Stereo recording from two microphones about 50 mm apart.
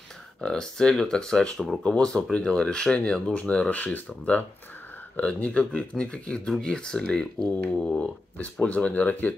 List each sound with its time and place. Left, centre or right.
0.4 s speech: centre
3.3 s speech: left